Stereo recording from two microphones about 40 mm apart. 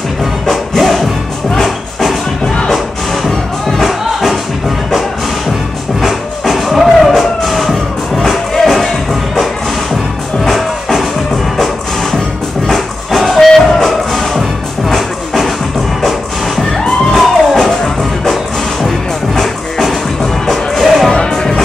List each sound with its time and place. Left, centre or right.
0.2 s music: centre
2.4 s music: left
3.3 s music: centre
16.0 s music: centre
20.8 s music: centre
21.1 s music: centre